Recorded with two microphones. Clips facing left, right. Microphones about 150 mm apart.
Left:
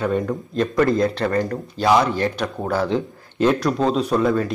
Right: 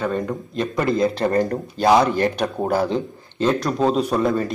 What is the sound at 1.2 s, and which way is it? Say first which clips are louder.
Speech: right 2 dB; 30° right (ahead or behind).